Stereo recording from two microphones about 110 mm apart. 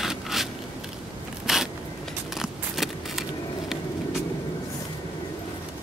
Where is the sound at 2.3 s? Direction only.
Centre (ahead or behind).